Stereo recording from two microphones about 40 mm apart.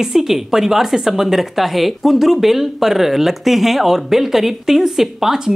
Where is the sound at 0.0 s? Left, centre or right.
Centre.